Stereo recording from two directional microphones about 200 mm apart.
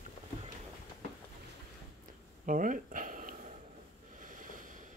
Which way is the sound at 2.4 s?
40° right (ahead or behind).